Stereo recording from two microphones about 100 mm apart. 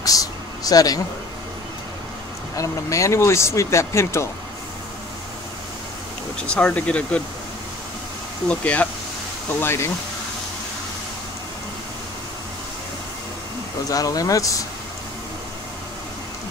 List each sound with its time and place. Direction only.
0.0 s a sound: 35° left (ahead or behind)
2.5 s speech: 30° left (ahead or behind)
6.4 s speech: 10° left (ahead or behind)
8.5 s speech: 10° left (ahead or behind)
9.6 s speech: 25° left (ahead or behind)
13.8 s speech: 35° left (ahead or behind)